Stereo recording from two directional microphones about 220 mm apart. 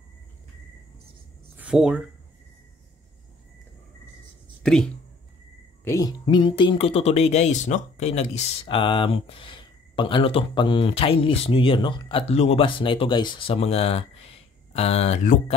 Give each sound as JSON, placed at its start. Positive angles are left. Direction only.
{"t": 1.6, "sound": "speech", "side_deg": -5}
{"t": 5.9, "sound": "speech", "side_deg": 15}